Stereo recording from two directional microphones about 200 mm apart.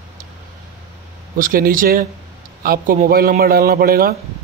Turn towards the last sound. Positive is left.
turn(degrees=-50)  # may be behind; listen again after turning